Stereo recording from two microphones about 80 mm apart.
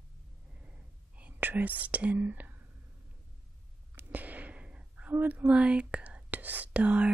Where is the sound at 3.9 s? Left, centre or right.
Right.